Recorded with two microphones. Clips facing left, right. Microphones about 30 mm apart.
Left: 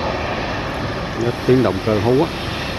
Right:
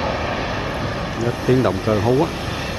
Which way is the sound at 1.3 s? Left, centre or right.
Left.